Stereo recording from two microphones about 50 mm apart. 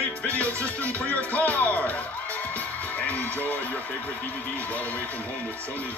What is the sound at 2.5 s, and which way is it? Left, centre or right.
Music, left.